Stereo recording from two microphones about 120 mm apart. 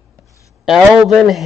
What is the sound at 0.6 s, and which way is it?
Speech, centre (ahead or behind).